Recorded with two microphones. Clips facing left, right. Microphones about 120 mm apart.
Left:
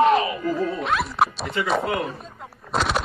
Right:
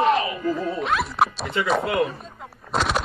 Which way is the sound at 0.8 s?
Centre (ahead or behind).